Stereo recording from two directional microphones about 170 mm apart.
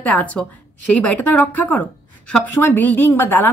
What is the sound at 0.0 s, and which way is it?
A woman's voice, 10° left (ahead or behind).